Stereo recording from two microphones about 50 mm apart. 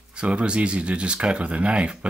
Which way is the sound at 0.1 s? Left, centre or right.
Right.